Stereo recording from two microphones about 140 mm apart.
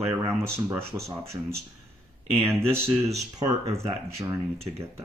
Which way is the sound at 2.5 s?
15° right (ahead or behind).